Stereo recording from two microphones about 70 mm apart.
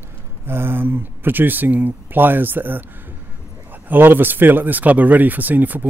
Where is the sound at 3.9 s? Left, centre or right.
Right.